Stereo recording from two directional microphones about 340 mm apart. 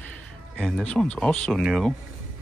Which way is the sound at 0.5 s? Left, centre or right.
Centre.